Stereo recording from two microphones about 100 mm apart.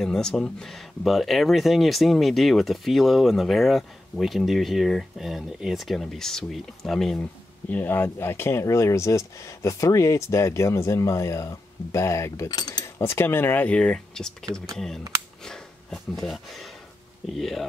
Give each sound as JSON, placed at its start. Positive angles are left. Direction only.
{"t": 0.0, "sound": "speech", "side_deg": 5}
{"t": 7.7, "sound": "speech", "side_deg": 20}
{"t": 12.5, "sound": "speech", "side_deg": 40}
{"t": 12.8, "sound": "speech", "side_deg": 25}
{"t": 15.4, "sound": "a sound", "side_deg": 5}
{"t": 17.4, "sound": "speech", "side_deg": 0}